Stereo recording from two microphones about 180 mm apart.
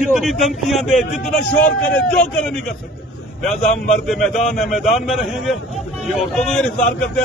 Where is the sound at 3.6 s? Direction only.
45° left (ahead or behind).